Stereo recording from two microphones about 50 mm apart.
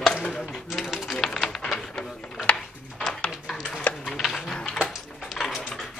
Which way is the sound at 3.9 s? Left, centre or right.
Left.